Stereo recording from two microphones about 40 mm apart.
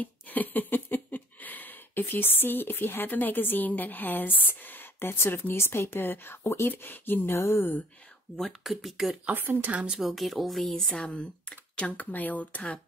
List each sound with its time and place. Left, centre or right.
0.0 s a sound: left
6.7 s speech: left
8.4 s speech: centre
9.3 s speech: right
9.9 s speech: centre
11.1 s speech: left
12.0 s speech: left